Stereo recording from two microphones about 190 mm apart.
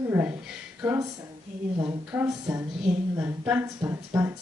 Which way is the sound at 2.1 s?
10° right (ahead or behind).